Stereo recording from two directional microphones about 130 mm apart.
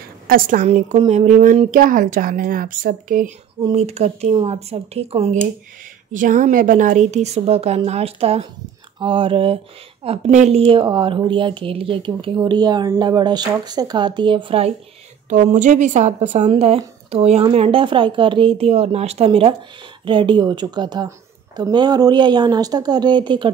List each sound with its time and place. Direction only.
0.3 s a woman's voice: 90° right
0.9 s speech: 45° right (ahead or behind)
1.2 s a woman's voice: 85° right
3.7 s speech: 55° right (ahead or behind)
6.1 s speech: 85° right; by 10.6 s 60° right (ahead or behind)
10.6 s speech: 40° right (ahead or behind)
15.2 s speech: 75° right (ahead or behind); by 23.5 s 35° right (ahead or behind)